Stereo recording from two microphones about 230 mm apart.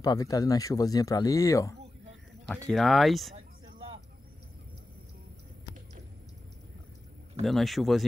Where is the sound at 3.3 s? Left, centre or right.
Right.